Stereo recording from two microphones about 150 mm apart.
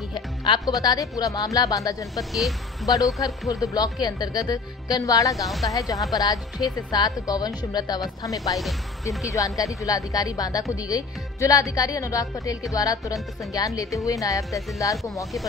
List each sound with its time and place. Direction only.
0.1 s speech: 30° left (ahead or behind)
2.1 s speech: centre (ahead or behind)
3.4 s speech: 20° left (ahead or behind)
5.3 s speech: centre (ahead or behind)
6.1 s speech: 25° left (ahead or behind)